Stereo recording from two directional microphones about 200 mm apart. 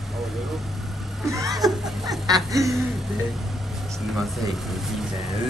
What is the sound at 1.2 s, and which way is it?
Laughter, 15° right (ahead or behind).